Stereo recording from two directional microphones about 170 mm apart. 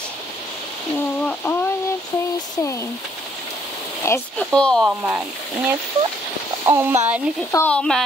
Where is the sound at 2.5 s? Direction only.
20° left (ahead or behind).